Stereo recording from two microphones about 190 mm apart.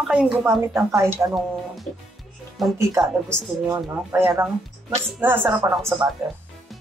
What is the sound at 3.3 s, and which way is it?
A woman's voice, 15° right (ahead or behind).